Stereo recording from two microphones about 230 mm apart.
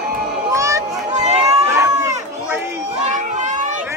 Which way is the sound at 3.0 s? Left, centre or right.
Right.